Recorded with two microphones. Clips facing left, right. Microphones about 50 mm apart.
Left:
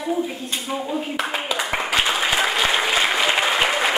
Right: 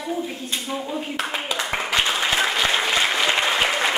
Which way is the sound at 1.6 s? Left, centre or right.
Centre.